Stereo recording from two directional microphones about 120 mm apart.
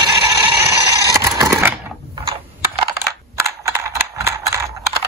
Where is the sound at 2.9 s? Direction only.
25° right (ahead or behind).